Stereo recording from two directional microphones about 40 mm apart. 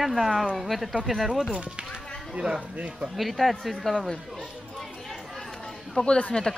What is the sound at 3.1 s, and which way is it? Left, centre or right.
Speech, centre.